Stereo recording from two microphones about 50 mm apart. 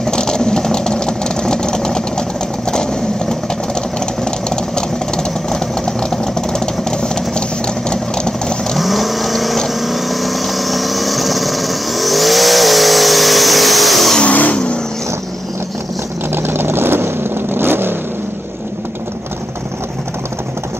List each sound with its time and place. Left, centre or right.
0.0 s vehicle: centre
8.7 s vehicle: centre
14.2 s vehicle: left
16.3 s vehicle: right